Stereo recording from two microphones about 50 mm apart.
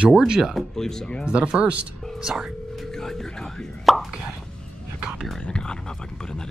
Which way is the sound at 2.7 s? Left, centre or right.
Centre.